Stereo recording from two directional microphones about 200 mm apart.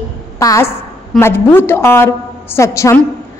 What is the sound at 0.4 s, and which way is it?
A woman's voice, 15° left (ahead or behind).